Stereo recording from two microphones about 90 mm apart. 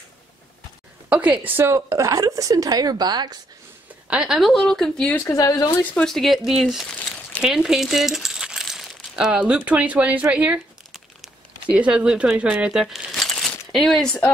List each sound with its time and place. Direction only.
1.0 s a woman's voice: 15° right (ahead or behind)
1.7 s a woman's voice: 35° right (ahead or behind); by 3.3 s 50° right (ahead or behind)
4.1 s a woman's voice: 5° right (ahead or behind)
5.1 s speech: 30° left (ahead or behind)
5.8 s speech: 20° left (ahead or behind)
6.0 s a woman's voice: centre (ahead or behind)
11.7 s speech: 10° right (ahead or behind)
13.1 s a sound: 5° left (ahead or behind)